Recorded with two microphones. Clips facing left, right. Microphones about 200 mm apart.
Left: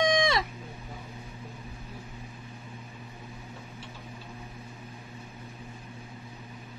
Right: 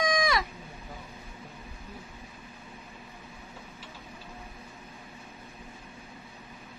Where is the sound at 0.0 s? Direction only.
25° left (ahead or behind).